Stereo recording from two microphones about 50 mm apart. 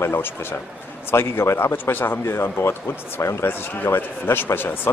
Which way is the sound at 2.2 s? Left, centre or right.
Left.